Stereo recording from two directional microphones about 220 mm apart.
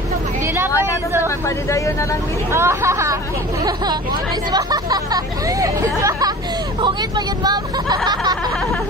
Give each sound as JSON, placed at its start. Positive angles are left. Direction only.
{"t": 1.7, "sound": "speech", "side_deg": 15}
{"t": 2.5, "sound": "speech", "side_deg": -10}